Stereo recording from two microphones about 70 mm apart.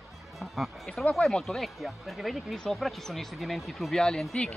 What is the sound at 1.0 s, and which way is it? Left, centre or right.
Speech, centre.